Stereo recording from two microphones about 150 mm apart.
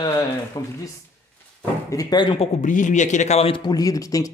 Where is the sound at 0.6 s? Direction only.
25° left (ahead or behind).